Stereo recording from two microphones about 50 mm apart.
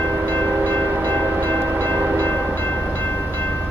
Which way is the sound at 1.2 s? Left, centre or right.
Right.